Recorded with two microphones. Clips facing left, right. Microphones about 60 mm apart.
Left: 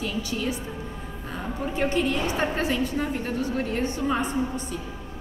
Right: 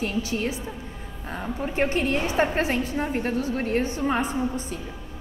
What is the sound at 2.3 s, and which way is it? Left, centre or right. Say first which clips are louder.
Speech: right 3 dB; right.